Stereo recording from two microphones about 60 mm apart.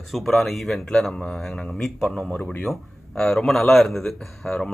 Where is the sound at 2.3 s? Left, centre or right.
Left.